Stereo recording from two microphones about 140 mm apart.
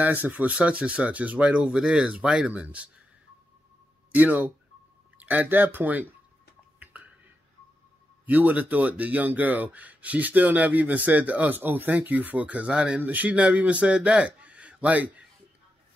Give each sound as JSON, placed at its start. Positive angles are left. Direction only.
{"t": 0.0, "sound": "speech", "side_deg": -10}
{"t": 4.1, "sound": "speech", "side_deg": -10}
{"t": 8.3, "sound": "speech", "side_deg": -10}